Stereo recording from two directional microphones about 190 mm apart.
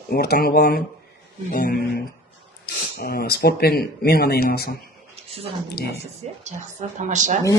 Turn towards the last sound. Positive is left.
turn(degrees=-40)  # may be behind; listen again after turning